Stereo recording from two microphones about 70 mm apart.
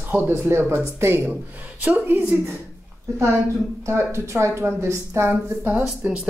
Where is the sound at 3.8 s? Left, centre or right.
Right.